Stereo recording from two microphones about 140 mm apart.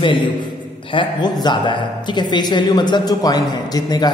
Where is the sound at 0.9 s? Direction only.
30° left (ahead or behind).